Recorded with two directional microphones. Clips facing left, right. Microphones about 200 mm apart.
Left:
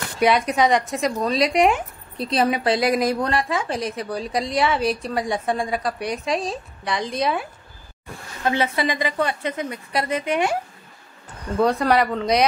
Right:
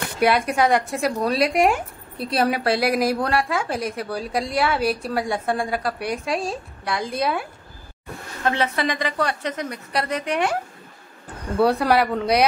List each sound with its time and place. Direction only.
0.2 s a woman's voice: 5° right (ahead or behind)
1.3 s speech: 55° right (ahead or behind)
2.2 s a woman's voice: 5° right (ahead or behind)
8.5 s a woman's voice: 5° left (ahead or behind)
11.5 s speech: 10° right (ahead or behind)